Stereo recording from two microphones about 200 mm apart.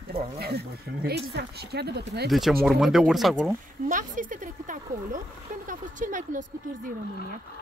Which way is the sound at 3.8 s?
40° right (ahead or behind).